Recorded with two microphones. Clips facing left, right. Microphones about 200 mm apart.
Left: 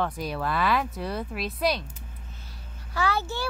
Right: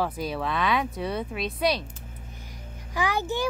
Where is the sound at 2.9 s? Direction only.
15° right (ahead or behind).